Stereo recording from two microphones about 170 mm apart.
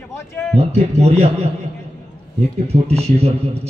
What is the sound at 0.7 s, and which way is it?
Speech, 40° right (ahead or behind).